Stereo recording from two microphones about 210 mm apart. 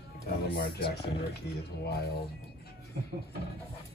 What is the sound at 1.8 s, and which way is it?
Speech, 50° left (ahead or behind).